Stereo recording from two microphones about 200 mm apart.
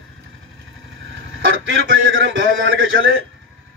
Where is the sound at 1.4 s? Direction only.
80° right.